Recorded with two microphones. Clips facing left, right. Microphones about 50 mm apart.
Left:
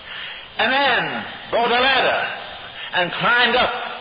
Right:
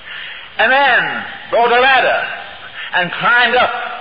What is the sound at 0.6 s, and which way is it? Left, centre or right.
Speech, right.